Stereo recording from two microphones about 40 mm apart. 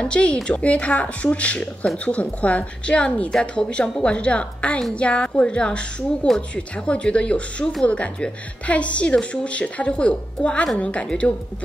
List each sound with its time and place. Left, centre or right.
0.0 s a woman's voice: left